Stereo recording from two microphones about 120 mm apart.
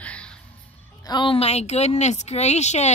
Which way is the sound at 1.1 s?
40° left (ahead or behind).